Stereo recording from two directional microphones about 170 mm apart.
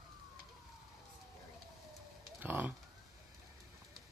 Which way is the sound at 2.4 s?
10° right (ahead or behind).